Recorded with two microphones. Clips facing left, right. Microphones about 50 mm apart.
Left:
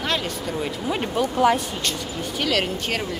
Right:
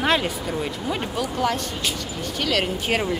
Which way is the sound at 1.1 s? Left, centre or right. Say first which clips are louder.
Left 7 dB; centre.